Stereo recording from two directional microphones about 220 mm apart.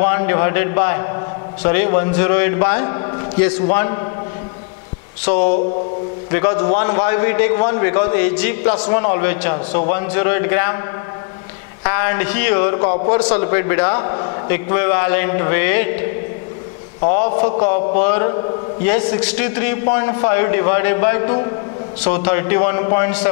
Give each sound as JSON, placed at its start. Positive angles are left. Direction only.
{"t": 0.0, "sound": "a man's voice", "side_deg": 15}
{"t": 5.3, "sound": "a man's voice", "side_deg": 15}
{"t": 11.8, "sound": "a man's voice", "side_deg": 15}
{"t": 12.8, "sound": "a man's voice", "side_deg": 30}
{"t": 13.2, "sound": "a man's voice", "side_deg": 15}